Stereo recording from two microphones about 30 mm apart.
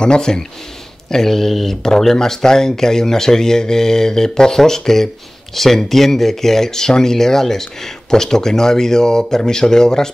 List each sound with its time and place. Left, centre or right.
0.0 s speech: left
1.1 s speech: centre